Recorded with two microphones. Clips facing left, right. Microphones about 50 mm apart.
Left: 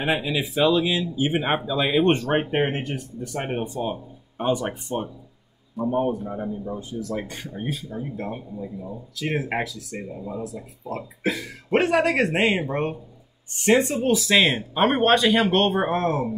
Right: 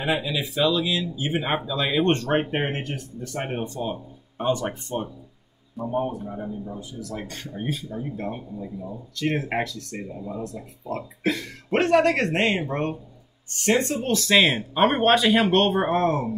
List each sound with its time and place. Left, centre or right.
0.0 s speech: left
5.9 s speech: left
6.2 s speech: centre
6.8 s speech: left
7.2 s a man's voice: centre